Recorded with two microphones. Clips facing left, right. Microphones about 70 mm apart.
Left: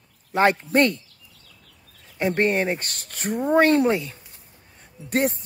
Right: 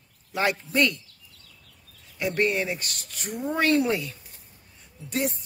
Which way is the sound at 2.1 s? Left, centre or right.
Left.